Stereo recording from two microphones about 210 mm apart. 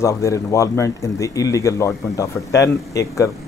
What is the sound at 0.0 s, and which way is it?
Speech, 15° left (ahead or behind).